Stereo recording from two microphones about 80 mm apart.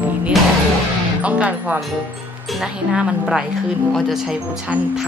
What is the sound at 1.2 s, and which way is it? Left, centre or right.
A woman's voice, centre.